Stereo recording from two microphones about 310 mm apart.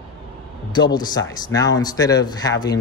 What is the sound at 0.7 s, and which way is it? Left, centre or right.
Speech, centre.